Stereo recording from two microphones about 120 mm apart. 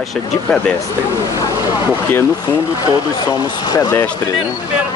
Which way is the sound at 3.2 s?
35° left (ahead or behind).